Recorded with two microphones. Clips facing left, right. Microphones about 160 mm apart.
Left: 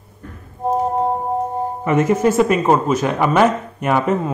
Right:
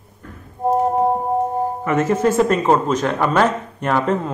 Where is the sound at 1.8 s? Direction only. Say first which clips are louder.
Left 3 dB; 15° left (ahead or behind).